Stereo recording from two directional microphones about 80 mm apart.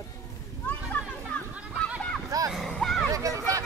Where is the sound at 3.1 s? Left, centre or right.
Right.